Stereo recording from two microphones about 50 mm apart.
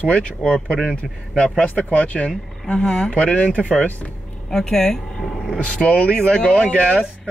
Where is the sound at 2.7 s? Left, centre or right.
Centre.